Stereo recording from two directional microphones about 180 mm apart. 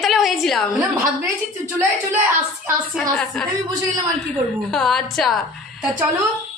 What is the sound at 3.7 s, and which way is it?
Speech, 20° right (ahead or behind).